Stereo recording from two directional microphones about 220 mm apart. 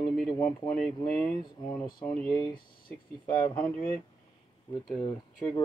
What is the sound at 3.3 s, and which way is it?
Speech, 20° left (ahead or behind).